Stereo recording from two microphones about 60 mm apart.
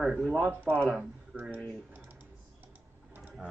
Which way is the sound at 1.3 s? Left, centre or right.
Centre.